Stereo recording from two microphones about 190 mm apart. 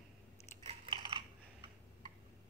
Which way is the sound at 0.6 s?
25° right (ahead or behind).